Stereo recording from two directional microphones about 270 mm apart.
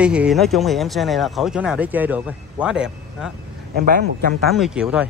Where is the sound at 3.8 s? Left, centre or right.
Right.